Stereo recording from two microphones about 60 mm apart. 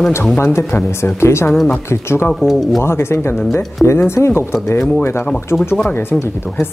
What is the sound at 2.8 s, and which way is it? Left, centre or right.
Speech, left.